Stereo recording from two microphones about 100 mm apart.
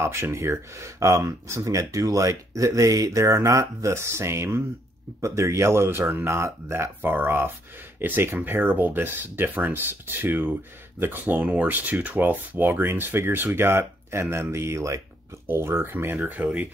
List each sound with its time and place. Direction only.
0.0 s speech: 25° right (ahead or behind)
16.3 s speech: 10° right (ahead or behind)